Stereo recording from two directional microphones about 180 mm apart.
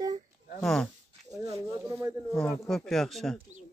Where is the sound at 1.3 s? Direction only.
15° right (ahead or behind).